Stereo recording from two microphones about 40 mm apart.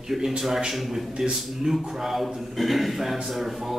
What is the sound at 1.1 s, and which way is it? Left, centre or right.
Speech, centre.